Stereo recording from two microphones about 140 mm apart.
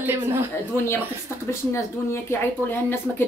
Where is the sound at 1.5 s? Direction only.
20° left (ahead or behind).